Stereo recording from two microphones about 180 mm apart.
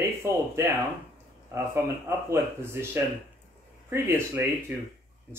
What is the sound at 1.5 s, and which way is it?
Speech, 15° right (ahead or behind).